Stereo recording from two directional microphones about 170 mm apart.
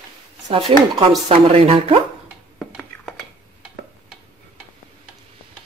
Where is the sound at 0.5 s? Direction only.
35° right (ahead or behind).